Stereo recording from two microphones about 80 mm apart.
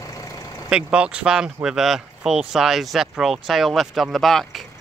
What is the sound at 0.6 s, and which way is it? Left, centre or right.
Speech, centre.